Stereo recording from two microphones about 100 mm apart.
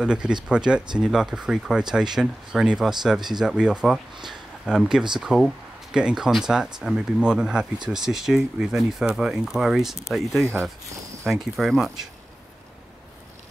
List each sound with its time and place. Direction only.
0.0 s speech: 10° right (ahead or behind)
4.3 s a sound: 5° right (ahead or behind)
5.2 s speech: 5° right (ahead or behind)